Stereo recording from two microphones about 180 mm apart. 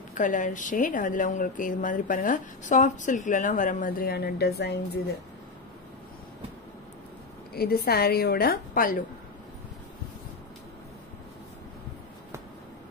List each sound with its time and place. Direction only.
0.1 s speech: 45° left (ahead or behind); by 5.0 s 65° left (ahead or behind)
7.5 s a woman's voice: 60° left (ahead or behind)